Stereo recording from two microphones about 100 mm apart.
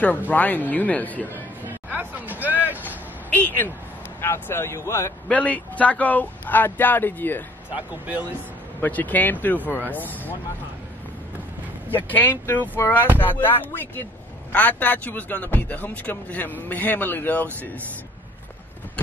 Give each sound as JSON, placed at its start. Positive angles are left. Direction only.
{"t": 0.3, "sound": "speech", "side_deg": 15}
{"t": 1.9, "sound": "hubbub", "side_deg": -15}
{"t": 3.3, "sound": "speech", "side_deg": 15}
{"t": 5.3, "sound": "speech", "side_deg": 15}
{"t": 7.7, "sound": "speech", "side_deg": -15}
{"t": 8.8, "sound": "speech", "side_deg": 15}
{"t": 11.9, "sound": "speech", "side_deg": 20}